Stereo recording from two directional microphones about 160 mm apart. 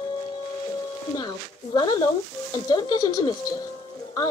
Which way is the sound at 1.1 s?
25° left (ahead or behind).